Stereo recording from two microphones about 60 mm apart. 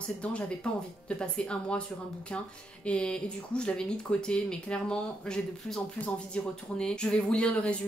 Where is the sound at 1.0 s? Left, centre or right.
Centre.